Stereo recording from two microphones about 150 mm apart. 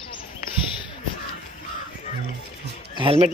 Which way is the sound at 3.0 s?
40° right (ahead or behind).